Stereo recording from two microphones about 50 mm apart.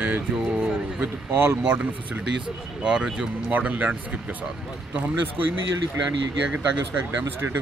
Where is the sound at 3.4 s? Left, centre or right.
Right.